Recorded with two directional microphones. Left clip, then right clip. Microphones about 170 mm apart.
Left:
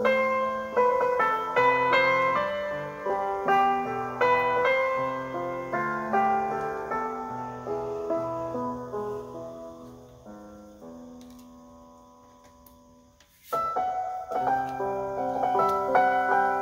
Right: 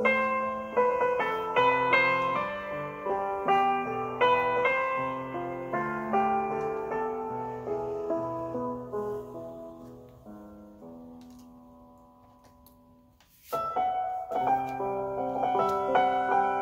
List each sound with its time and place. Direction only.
0.0 s music: 20° left (ahead or behind)
14.3 s music: 20° left (ahead or behind)